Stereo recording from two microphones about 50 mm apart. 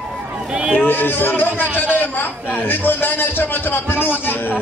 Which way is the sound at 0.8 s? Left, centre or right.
Left.